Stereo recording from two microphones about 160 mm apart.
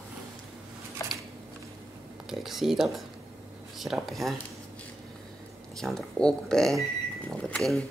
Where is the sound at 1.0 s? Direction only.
20° left (ahead or behind).